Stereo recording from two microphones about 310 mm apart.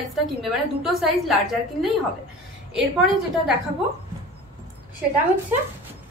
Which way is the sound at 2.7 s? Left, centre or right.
Centre.